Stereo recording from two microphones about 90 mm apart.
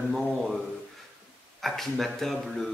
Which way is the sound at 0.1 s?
Centre (ahead or behind).